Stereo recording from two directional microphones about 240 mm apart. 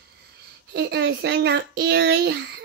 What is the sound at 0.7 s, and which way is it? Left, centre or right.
A child's voice, right.